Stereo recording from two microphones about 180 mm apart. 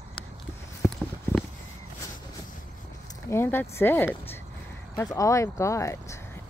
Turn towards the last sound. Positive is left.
turn(degrees=15)  # may be behind; listen again after turning